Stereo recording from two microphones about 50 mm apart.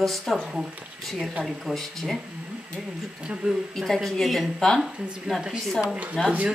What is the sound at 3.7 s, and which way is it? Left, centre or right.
Speech, centre.